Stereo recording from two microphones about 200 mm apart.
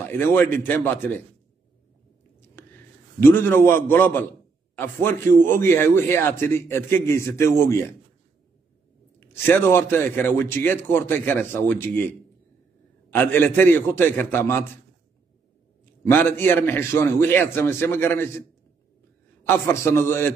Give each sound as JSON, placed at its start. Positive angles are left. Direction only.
{"t": 0.2, "sound": "a man's voice", "side_deg": 10}
{"t": 2.6, "sound": "a sound", "side_deg": 10}
{"t": 3.2, "sound": "a man's voice", "side_deg": 10}
{"t": 9.2, "sound": "a man's voice", "side_deg": 10}
{"t": 15.8, "sound": "a man's voice", "side_deg": 10}
{"t": 19.4, "sound": "a man's voice", "side_deg": 10}